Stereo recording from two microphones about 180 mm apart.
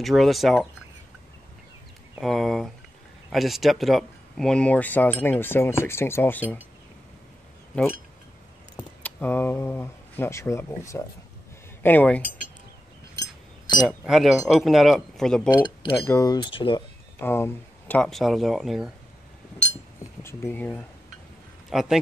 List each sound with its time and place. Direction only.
0.0 s speech: centre (ahead or behind)
2.1 s speech: centre (ahead or behind)
8.7 s speech: 10° left (ahead or behind)
13.2 s chink: 20° left (ahead or behind)
13.8 s speech: centre (ahead or behind)
15.5 s speech: 25° left (ahead or behind)
17.2 s speech: 15° left (ahead or behind)
20.2 s speech: 10° left (ahead or behind)
21.6 s a man's voice: centre (ahead or behind)